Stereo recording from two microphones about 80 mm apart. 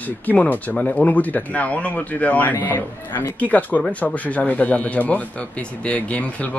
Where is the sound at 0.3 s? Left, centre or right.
Left.